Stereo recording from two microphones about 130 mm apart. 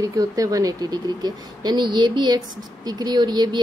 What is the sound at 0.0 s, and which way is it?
Speech, 25° right (ahead or behind).